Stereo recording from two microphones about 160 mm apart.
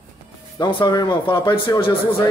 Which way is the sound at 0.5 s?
25° left (ahead or behind).